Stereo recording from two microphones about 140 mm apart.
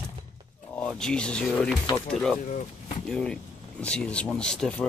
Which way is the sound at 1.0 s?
5° left (ahead or behind).